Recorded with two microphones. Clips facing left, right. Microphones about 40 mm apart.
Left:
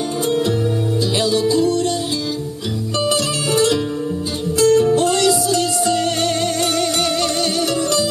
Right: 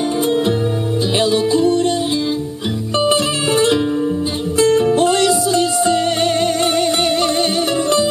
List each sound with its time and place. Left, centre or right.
1.2 s music: right
3.1 s music: right